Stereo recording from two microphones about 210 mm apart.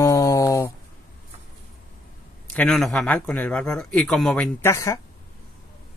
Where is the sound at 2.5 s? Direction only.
5° left (ahead or behind).